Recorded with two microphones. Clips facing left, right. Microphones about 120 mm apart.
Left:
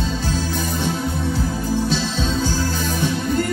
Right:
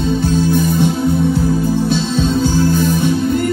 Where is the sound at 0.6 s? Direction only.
60° right (ahead or behind).